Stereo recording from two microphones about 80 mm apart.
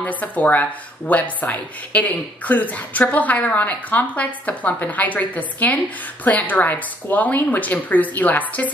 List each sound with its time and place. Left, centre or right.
0.0 s speech: centre